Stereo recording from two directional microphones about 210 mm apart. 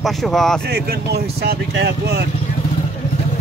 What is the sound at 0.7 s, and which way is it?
Speech, 50° right (ahead or behind).